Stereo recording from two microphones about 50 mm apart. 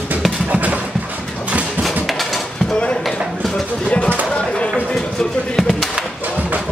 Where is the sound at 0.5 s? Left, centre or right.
Right.